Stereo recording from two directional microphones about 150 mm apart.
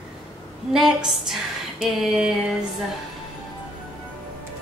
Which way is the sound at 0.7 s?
Centre (ahead or behind).